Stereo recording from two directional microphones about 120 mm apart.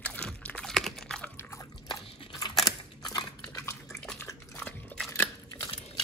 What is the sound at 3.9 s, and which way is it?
Dog, 5° left (ahead or behind).